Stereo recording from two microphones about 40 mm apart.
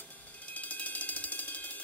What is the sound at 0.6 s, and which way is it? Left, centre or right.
Ratchet, left.